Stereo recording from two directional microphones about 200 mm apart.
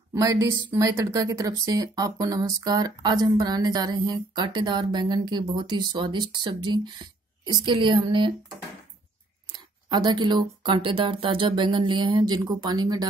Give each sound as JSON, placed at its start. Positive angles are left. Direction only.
{"t": 0.1, "sound": "speech", "side_deg": -15}
{"t": 9.5, "sound": "speech", "side_deg": -20}